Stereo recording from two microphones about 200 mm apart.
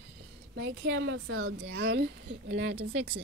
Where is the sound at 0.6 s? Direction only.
65° right (ahead or behind).